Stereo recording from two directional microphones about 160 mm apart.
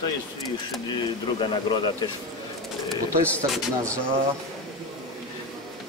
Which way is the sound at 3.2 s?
10° left (ahead or behind).